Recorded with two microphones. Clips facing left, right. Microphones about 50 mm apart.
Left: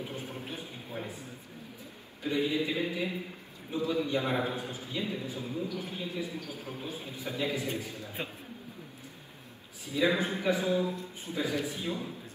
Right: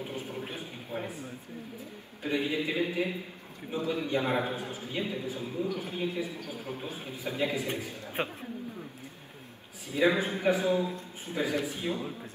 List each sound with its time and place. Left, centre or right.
0.0 s a sound: right
2.2 s a man's voice: right
9.8 s a man's voice: right